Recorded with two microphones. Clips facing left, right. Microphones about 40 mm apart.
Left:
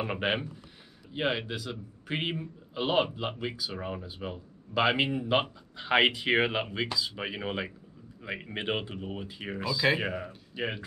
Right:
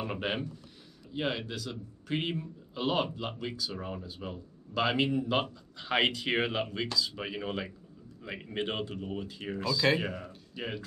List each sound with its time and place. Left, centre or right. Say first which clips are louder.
0.0 s speech: left 3 dB; left